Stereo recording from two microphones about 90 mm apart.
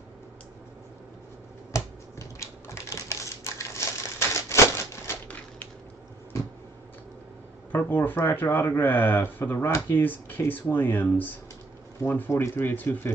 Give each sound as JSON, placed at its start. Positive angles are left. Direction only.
{"t": 1.7, "sound": "computer keyboard", "side_deg": 35}
{"t": 5.0, "sound": "typewriter", "side_deg": 25}
{"t": 7.7, "sound": "speech", "side_deg": 20}